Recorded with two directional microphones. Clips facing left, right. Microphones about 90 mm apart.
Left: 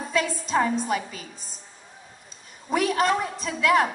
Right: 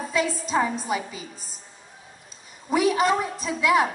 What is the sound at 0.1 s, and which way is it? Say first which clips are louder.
A woman's voice: even; 5° right (ahead or behind).